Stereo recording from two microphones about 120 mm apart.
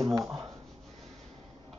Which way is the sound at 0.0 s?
Centre (ahead or behind).